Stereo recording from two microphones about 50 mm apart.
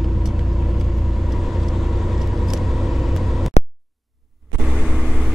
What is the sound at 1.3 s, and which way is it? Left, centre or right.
Vehicle, centre.